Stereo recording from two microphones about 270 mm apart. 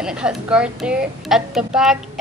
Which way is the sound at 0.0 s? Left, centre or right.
Centre.